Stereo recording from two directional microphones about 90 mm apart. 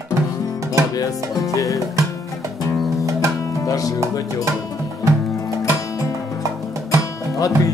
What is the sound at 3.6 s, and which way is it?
Music, 40° left (ahead or behind).